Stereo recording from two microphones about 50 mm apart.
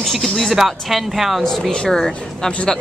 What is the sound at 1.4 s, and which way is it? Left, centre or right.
Speech, centre.